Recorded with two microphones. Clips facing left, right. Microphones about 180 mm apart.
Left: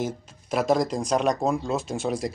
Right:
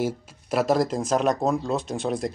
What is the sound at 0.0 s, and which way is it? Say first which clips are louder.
Speech: right 3 dB; centre (ahead or behind).